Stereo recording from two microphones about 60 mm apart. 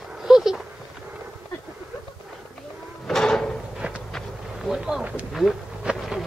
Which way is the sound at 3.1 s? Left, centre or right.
Centre.